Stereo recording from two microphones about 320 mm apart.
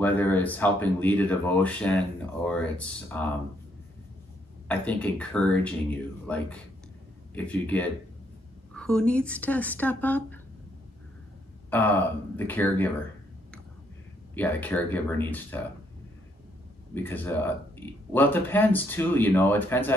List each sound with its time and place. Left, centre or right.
0.0 s speech: centre
4.6 s speech: centre
11.7 s speech: centre
14.3 s speech: centre
16.9 s speech: centre